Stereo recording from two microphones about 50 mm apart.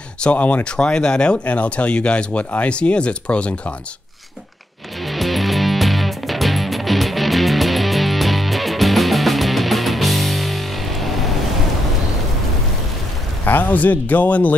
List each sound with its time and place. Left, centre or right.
0.2 s speech: left
5.0 s music: centre
13.5 s speech: left